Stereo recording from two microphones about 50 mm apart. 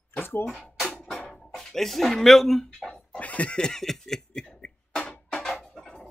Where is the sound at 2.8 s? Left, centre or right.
Centre.